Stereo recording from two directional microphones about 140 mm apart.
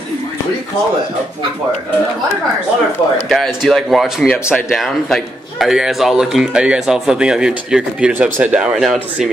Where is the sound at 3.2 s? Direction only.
Centre (ahead or behind).